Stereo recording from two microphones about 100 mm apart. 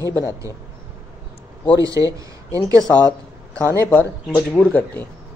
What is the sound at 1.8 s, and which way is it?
Speech, 35° right (ahead or behind).